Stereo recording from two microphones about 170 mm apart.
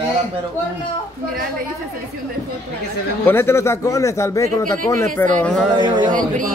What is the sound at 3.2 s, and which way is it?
A man's voice, 15° left (ahead or behind).